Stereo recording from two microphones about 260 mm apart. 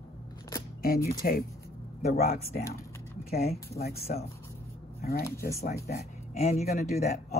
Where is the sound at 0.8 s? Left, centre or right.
Left.